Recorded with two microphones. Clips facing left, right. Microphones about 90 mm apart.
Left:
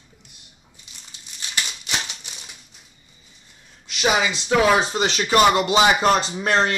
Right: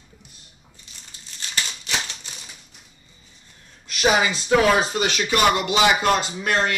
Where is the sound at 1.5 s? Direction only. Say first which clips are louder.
Even; 15° left (ahead or behind).